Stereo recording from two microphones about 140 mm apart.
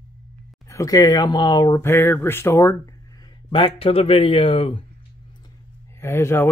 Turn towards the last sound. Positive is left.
turn(degrees=20)  # may be behind; listen again after turning